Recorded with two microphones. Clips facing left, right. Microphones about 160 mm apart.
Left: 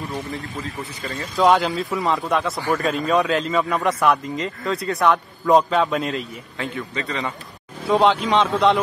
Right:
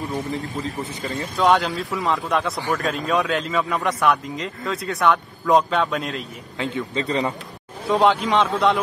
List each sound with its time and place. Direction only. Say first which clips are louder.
0.1 s a man's voice: right 3 dB; 15° right (ahead or behind)
1.4 s a man's voice: left 2 dB; centre (ahead or behind)
7.1 s a man's voice: right 6 dB; 35° right (ahead or behind)
7.9 s a man's voice: left 1 dB; centre (ahead or behind)